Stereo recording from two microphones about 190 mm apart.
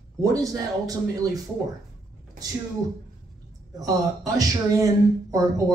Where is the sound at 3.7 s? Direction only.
20° right (ahead or behind).